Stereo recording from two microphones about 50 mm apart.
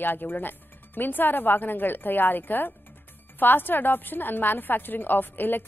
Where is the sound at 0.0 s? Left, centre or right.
Left.